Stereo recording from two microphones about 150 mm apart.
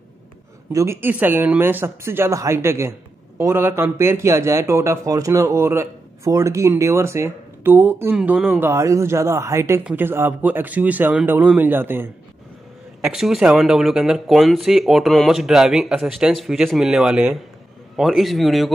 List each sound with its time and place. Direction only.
0.7 s a man's voice: 20° right (ahead or behind)
8.6 s a man's voice: 20° right (ahead or behind)
13.0 s speech: 5° right (ahead or behind)